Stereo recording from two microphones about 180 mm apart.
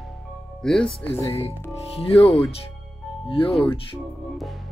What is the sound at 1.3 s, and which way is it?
Speech, 35° left (ahead or behind).